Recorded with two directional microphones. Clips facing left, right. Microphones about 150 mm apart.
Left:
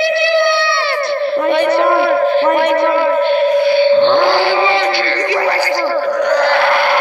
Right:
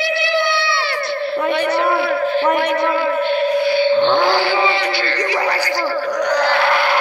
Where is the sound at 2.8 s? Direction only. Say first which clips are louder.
Left 5 dB; 60° left (ahead or behind).